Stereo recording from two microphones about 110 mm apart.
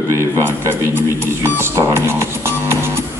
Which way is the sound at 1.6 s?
25° right (ahead or behind).